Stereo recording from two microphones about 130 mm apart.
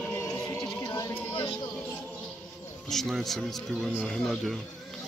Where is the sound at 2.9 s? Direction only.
Centre (ahead or behind).